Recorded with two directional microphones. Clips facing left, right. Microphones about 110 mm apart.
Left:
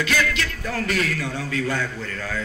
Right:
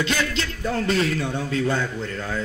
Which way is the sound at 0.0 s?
25° right (ahead or behind).